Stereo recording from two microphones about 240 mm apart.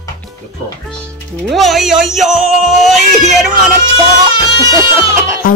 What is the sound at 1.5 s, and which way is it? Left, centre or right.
Speech, centre.